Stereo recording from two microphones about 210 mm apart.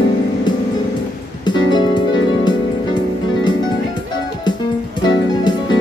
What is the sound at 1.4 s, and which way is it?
Music, 20° left (ahead or behind).